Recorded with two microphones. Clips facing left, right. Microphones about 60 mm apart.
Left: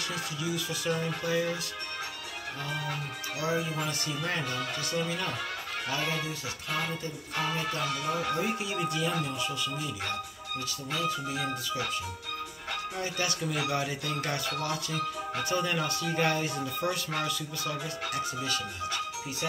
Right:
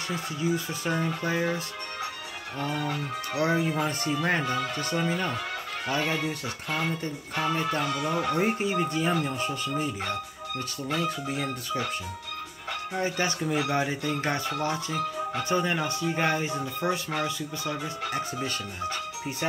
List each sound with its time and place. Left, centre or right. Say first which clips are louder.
0.1 s speech: right 8 dB; right
3.3 s speech: right 5 dB; right
8.3 s speech: right 5 dB; right
18.4 s speech: right 2 dB; right